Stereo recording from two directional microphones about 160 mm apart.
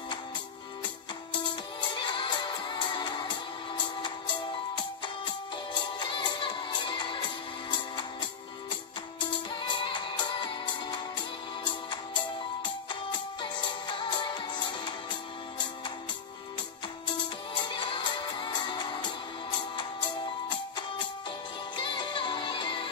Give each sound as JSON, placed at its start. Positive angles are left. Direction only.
{"t": 1.4, "sound": "music", "side_deg": 30}
{"t": 17.6, "sound": "music", "side_deg": 30}